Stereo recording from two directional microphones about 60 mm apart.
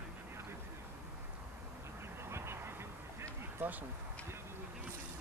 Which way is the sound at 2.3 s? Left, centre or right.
Right.